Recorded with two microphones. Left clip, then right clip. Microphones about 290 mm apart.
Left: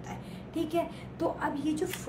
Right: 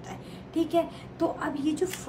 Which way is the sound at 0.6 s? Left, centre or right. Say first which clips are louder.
Right 5 dB; centre.